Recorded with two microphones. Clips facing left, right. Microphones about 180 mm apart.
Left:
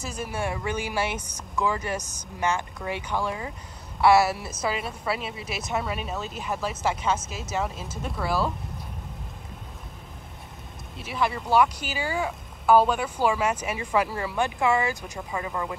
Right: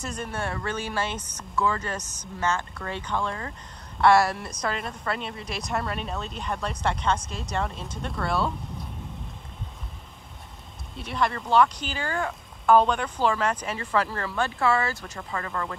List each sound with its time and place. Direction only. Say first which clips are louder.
0.0 s a woman's voice: left 1 dB; 5° left (ahead or behind)
11.0 s speech: even; 5° left (ahead or behind)